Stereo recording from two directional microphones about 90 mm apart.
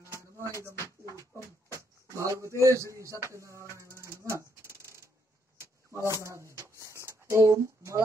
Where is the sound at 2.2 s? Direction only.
35° right (ahead or behind).